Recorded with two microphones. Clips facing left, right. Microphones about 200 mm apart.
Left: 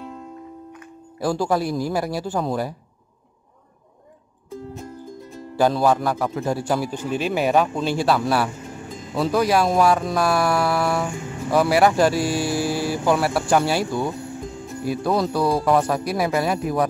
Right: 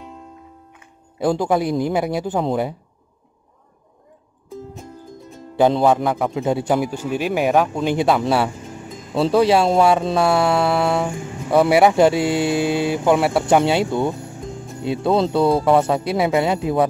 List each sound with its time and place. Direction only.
1.2 s speech: 20° right (ahead or behind)
4.5 s music: centre (ahead or behind)
5.6 s speech: 20° right (ahead or behind)